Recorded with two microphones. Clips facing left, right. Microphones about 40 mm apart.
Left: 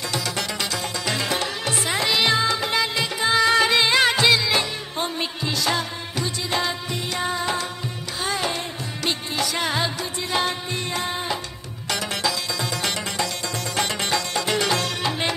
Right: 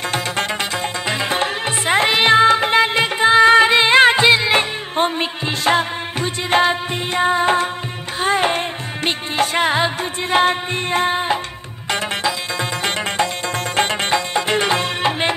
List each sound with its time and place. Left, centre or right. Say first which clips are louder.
1.0 s music: right 5 dB; right
13.7 s music: right 6 dB; right